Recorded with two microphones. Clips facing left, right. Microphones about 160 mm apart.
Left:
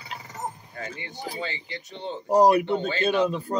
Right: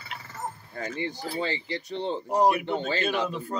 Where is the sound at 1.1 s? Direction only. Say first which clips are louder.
Right 1 dB; 15° left (ahead or behind).